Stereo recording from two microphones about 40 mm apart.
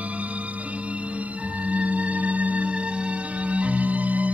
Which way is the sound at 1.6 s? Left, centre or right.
Right.